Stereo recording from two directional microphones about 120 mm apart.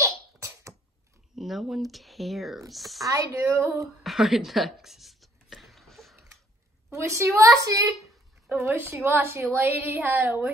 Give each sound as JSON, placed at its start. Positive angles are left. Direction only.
{"t": 0.0, "sound": "cough", "side_deg": -25}
{"t": 1.3, "sound": "speech", "side_deg": 0}
{"t": 3.1, "sound": "a woman's voice", "side_deg": -25}
{"t": 4.0, "sound": "a sound", "side_deg": 0}
{"t": 6.9, "sound": "a woman's voice", "side_deg": -25}
{"t": 7.9, "sound": "a sound", "side_deg": 0}
{"t": 8.5, "sound": "a woman's voice", "side_deg": -20}